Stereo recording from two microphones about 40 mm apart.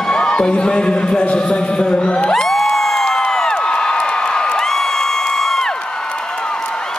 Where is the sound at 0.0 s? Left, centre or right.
Left.